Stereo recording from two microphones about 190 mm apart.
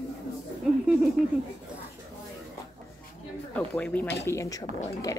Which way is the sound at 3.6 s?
5° left (ahead or behind).